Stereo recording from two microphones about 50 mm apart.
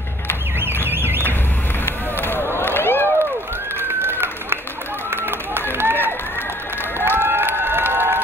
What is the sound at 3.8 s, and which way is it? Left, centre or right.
Run, right.